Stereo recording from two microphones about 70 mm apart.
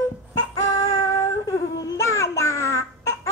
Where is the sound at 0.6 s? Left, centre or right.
Left.